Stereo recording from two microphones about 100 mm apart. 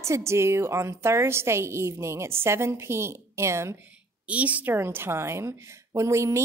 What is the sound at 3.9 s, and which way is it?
Speech, 15° right (ahead or behind).